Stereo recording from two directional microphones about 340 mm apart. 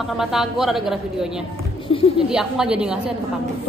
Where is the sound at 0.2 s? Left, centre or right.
Centre.